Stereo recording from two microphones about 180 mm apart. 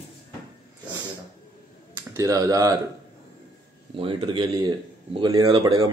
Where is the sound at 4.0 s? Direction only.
25° right (ahead or behind).